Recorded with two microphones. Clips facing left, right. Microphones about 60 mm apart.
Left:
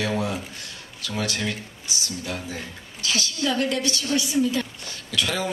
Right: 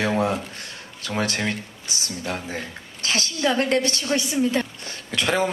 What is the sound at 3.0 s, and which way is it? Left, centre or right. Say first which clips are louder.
A woman's voice: right 3 dB; right.